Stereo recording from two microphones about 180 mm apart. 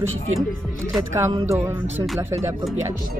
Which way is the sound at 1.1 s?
15° right (ahead or behind).